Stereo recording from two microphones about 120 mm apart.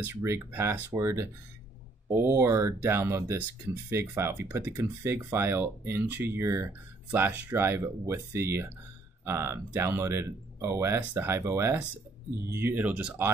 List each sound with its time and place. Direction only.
0.0 s speech: 20° right (ahead or behind)